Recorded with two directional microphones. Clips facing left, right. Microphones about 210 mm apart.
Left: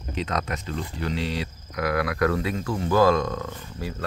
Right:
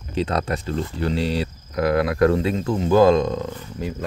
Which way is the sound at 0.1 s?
30° right (ahead or behind).